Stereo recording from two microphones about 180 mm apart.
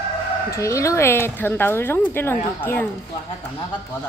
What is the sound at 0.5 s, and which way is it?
A woman's voice, 15° left (ahead or behind).